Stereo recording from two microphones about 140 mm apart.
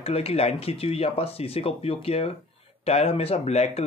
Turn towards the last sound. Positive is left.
turn(degrees=50)  # may be behind; listen again after turning